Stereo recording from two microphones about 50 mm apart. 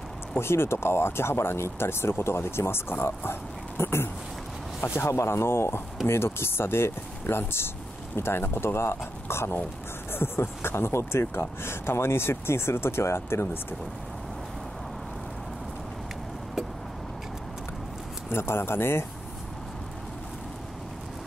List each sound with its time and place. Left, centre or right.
0.4 s speech: left
18.3 s speech: left